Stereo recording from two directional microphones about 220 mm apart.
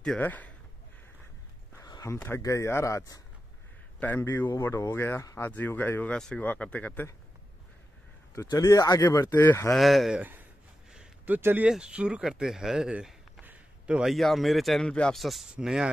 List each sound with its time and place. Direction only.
0.0 s speech: 5° left (ahead or behind)
1.8 s speech: 15° left (ahead or behind)
8.4 s speech: 15° left (ahead or behind)
9.8 s speech: centre (ahead or behind)